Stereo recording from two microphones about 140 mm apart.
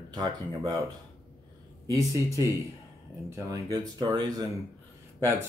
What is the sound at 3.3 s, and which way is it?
Speech, 25° right (ahead or behind).